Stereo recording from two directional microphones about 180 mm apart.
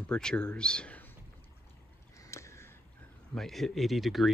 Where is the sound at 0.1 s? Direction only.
5° left (ahead or behind).